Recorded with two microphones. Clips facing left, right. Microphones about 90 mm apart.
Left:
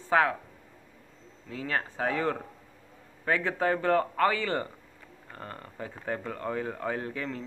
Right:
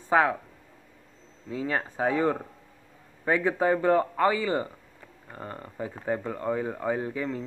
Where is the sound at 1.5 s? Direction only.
20° right (ahead or behind).